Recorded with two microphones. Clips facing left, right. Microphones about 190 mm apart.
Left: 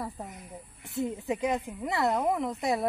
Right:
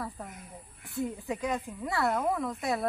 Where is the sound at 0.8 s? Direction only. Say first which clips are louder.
Left 2 dB; 25° left (ahead or behind).